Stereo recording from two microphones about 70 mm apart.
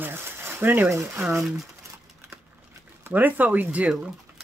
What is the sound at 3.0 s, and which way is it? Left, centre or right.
Speech, right.